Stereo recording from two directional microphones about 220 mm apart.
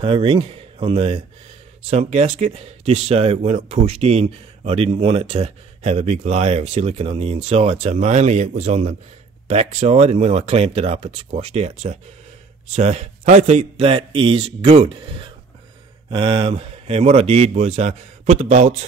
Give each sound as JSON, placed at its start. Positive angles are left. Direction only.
{"t": 0.0, "sound": "speech", "side_deg": -25}